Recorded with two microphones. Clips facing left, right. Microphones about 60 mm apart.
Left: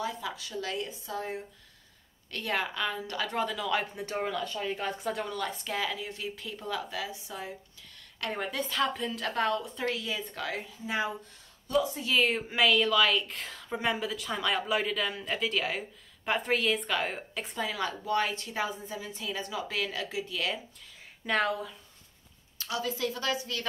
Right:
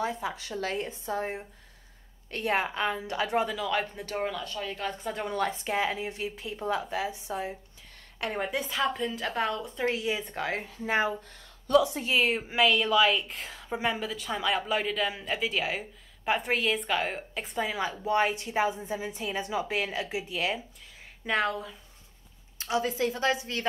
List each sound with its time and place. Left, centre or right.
0.0 s a woman's voice: right
3.4 s speech: centre
3.9 s speech: centre
4.2 s speech: centre
4.5 s speech: centre
5.3 s a woman's voice: right
8.3 s a woman's voice: centre
9.8 s a woman's voice: right
10.6 s speech: right
11.7 s a woman's voice: right
12.2 s a woman's voice: centre
17.6 s a woman's voice: centre
21.3 s speech: centre
22.6 s a woman's voice: right